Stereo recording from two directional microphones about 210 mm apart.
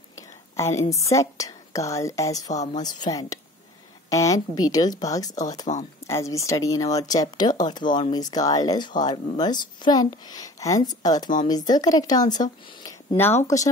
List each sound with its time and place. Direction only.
0.6 s speech: 15° left (ahead or behind)